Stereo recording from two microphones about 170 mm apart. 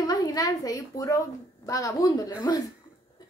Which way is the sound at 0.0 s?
20° left (ahead or behind).